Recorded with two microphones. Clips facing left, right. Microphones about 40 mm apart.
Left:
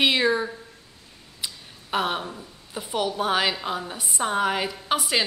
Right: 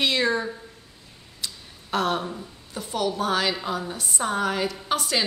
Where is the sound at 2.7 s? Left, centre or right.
Centre.